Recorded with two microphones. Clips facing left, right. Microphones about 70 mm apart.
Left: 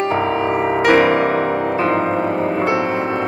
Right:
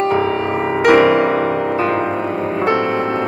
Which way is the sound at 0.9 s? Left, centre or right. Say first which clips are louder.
Right 2 dB; left.